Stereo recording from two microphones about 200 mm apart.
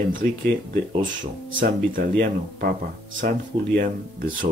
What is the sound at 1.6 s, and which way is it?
Speech, 45° right (ahead or behind).